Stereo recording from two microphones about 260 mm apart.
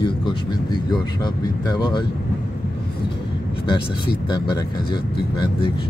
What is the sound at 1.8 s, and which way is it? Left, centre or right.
Speech, centre.